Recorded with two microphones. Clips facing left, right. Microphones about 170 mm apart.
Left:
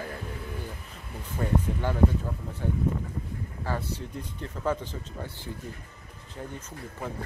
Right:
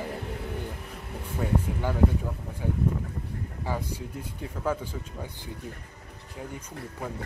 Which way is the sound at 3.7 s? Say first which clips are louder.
Even; 10° right (ahead or behind).